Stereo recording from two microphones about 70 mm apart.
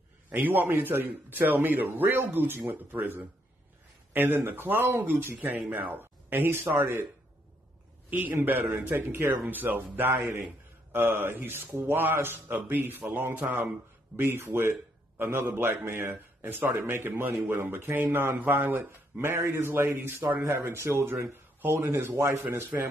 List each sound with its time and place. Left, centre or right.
0.3 s a man's voice: right
8.1 s a man's voice: right